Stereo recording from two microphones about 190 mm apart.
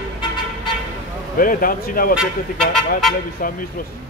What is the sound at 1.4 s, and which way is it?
Speech, 45° left (ahead or behind).